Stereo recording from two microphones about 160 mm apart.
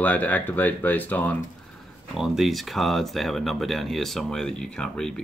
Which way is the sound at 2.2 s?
Centre (ahead or behind).